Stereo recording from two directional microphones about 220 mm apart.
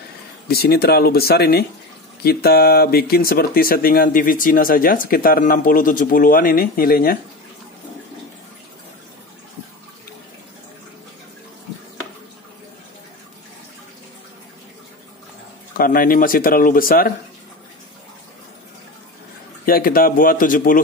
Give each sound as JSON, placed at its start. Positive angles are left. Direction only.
{"t": 0.5, "sound": "speech", "side_deg": 45}
{"t": 15.8, "sound": "speech", "side_deg": 40}
{"t": 19.6, "sound": "speech", "side_deg": 40}